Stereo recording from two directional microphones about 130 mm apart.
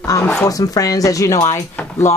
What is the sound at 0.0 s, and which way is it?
Speech, 25° left (ahead or behind).